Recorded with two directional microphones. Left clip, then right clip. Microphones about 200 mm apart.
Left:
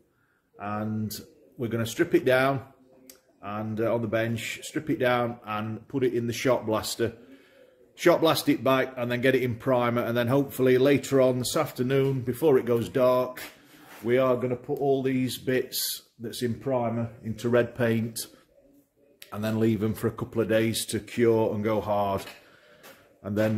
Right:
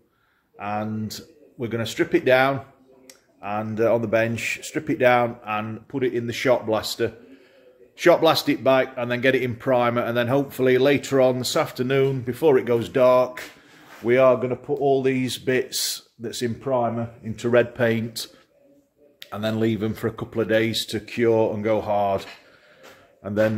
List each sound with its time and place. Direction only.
0.6 s speech: 10° right (ahead or behind)
3.3 s speech: 25° right (ahead or behind)
5.4 s speech: 5° right (ahead or behind)
23.2 s speech: 5° right (ahead or behind)